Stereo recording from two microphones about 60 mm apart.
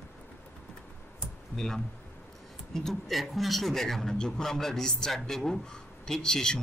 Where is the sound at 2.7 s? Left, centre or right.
Centre.